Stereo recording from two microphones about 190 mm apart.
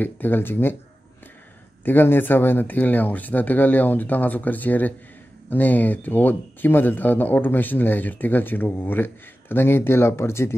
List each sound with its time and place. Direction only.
0.0 s speech: 10° left (ahead or behind)
1.9 s speech: 10° left (ahead or behind)